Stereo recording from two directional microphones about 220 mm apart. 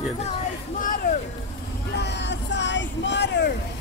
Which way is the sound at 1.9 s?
50° left (ahead or behind).